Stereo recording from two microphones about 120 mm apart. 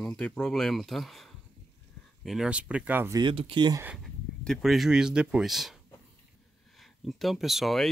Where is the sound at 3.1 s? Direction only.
40° right (ahead or behind).